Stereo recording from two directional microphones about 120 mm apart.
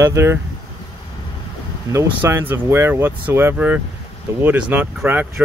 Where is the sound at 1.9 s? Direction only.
25° right (ahead or behind).